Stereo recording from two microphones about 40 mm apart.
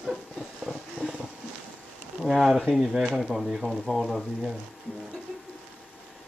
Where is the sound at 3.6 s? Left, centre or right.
Centre.